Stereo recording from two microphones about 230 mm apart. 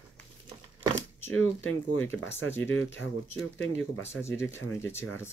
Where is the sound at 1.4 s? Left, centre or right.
Left.